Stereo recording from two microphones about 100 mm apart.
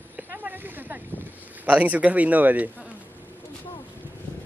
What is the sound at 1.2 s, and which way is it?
Speech, 15° right (ahead or behind).